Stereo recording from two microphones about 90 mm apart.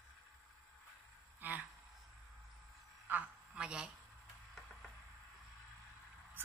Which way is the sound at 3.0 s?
15° right (ahead or behind).